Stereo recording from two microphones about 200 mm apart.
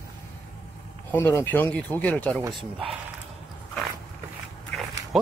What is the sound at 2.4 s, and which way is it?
Speech, 20° right (ahead or behind).